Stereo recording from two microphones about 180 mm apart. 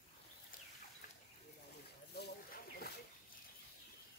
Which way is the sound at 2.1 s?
60° left (ahead or behind).